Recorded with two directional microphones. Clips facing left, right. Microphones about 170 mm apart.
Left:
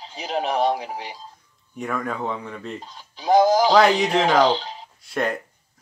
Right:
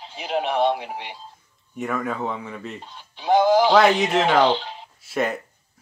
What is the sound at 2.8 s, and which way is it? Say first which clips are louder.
Speech: even; 40° left (ahead or behind).